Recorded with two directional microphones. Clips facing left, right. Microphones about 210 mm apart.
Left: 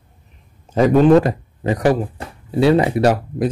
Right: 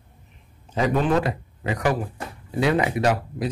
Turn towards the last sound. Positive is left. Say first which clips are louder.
# left 6 dB
turn(degrees=40)  # may be behind; listen again after turning